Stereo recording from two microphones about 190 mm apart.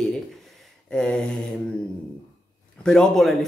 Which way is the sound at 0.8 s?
5° left (ahead or behind).